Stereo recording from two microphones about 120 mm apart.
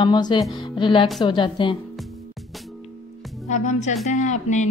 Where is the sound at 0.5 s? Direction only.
40° left (ahead or behind).